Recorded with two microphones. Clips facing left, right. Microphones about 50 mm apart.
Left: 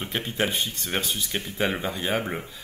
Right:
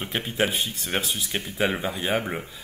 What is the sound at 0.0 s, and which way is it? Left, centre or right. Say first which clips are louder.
Speech: right 1 dB; centre.